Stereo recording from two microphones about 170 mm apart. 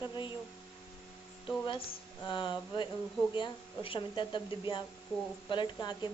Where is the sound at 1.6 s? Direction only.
30° left (ahead or behind).